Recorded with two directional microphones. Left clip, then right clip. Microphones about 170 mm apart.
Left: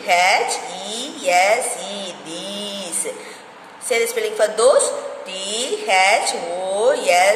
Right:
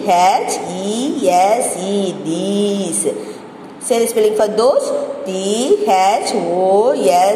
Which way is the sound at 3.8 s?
15° right (ahead or behind).